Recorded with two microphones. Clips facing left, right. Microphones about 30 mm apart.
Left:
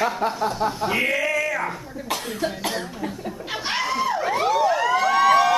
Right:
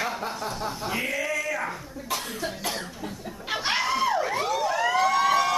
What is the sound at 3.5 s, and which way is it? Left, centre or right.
Laughter, centre.